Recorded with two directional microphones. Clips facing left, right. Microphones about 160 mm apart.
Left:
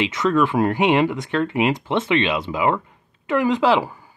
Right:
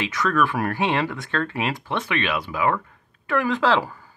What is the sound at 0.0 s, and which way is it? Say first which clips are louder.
Speech: left 4 dB; 20° left (ahead or behind).